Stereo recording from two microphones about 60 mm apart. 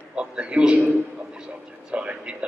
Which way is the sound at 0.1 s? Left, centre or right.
Centre.